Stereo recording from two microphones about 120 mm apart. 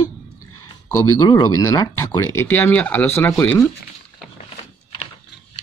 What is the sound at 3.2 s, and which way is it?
Speech, 20° left (ahead or behind).